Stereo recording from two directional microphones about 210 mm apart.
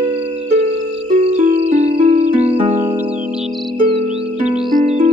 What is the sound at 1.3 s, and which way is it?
Music, 35° right (ahead or behind).